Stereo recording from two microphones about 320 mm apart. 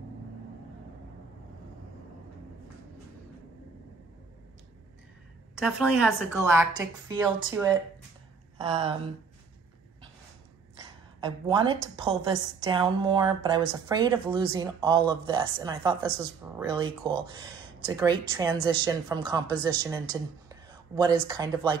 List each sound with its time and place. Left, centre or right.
5.6 s a woman's voice: centre
11.4 s a woman's voice: centre